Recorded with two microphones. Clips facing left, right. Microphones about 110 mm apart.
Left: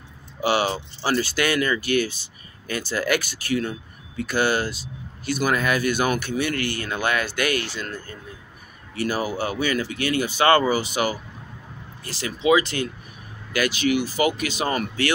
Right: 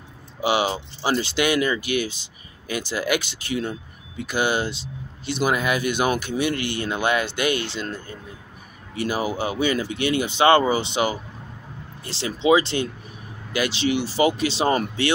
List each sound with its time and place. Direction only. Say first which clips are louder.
0.4 s speech: even; 15° right (ahead or behind)